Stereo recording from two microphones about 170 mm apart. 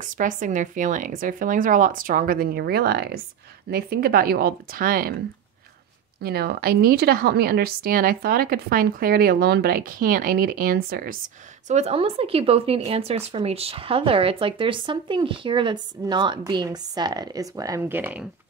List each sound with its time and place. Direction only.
0.0 s a woman's voice: 50° right (ahead or behind)
6.2 s a woman's voice: 65° right (ahead or behind)
11.6 s speech: 40° right (ahead or behind); by 18.2 s 10° right (ahead or behind)